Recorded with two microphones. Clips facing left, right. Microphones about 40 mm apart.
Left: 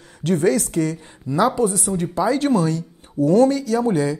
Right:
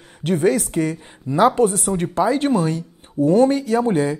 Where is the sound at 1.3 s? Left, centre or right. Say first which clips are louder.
Right 3 dB; right.